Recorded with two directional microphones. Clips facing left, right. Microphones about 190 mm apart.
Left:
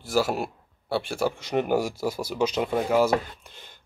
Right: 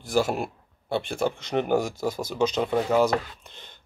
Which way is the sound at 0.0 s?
5° left (ahead or behind).